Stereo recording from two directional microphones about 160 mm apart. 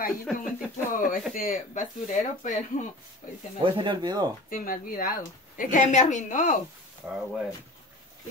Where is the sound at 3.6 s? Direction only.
30° right (ahead or behind).